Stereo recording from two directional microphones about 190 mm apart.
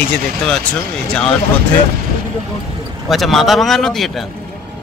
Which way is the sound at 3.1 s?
Centre (ahead or behind).